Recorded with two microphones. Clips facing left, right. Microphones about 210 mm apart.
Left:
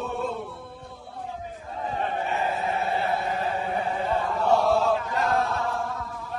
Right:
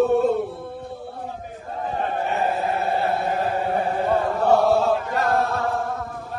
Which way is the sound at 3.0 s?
60° right (ahead or behind).